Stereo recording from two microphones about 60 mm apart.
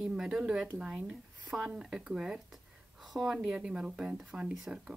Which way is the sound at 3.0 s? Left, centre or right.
Centre.